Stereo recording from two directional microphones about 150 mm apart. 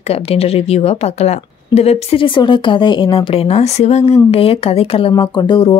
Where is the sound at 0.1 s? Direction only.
40° left (ahead or behind).